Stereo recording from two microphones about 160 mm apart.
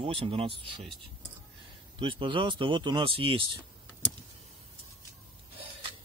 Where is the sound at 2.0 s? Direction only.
30° right (ahead or behind).